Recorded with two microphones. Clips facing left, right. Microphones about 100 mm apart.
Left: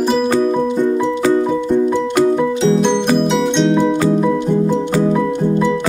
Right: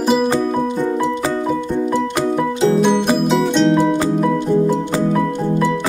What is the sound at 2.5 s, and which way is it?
Music, 5° right (ahead or behind).